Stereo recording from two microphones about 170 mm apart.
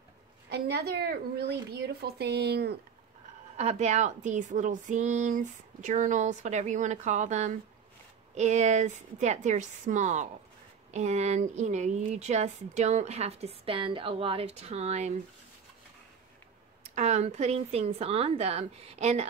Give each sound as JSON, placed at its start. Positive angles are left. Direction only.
{"t": 0.5, "sound": "a woman's voice", "side_deg": -75}
{"t": 3.5, "sound": "a woman's voice", "side_deg": -40}
{"t": 16.9, "sound": "a woman's voice", "side_deg": -40}